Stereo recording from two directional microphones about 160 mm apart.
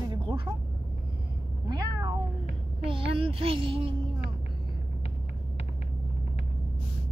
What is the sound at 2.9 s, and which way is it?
Speech, 35° right (ahead or behind).